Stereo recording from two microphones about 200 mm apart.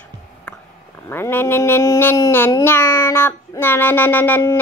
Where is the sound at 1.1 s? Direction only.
10° left (ahead or behind).